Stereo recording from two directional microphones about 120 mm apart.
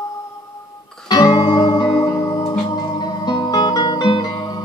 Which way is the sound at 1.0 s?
35° left (ahead or behind).